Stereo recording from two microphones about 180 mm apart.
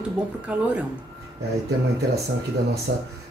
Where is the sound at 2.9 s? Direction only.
65° right (ahead or behind).